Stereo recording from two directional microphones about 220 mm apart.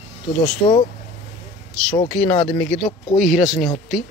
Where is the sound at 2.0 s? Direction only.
5° left (ahead or behind).